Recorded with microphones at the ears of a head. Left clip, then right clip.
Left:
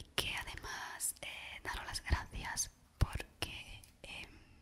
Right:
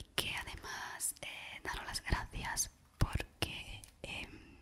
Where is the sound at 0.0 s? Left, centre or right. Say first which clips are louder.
Even; centre.